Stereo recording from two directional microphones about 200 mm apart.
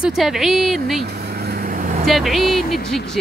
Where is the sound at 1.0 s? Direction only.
55° right (ahead or behind).